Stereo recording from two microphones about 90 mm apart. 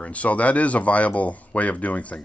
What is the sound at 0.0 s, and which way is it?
Speech, 15° left (ahead or behind).